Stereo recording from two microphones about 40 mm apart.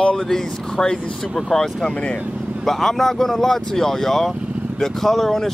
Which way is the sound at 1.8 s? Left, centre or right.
Left.